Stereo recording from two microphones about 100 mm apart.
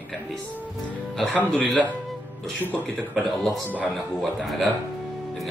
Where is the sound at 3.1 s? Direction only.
Centre (ahead or behind).